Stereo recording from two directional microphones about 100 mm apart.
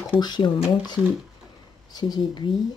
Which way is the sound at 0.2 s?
50° left (ahead or behind).